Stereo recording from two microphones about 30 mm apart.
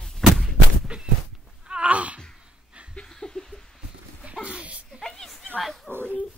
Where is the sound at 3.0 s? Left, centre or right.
Centre.